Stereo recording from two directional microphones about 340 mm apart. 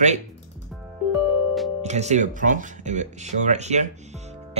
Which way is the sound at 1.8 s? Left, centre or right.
Centre.